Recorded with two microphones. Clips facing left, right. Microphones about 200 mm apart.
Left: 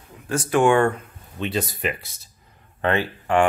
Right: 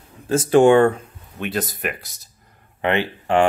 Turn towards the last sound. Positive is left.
turn(degrees=-20)  # may be behind; listen again after turning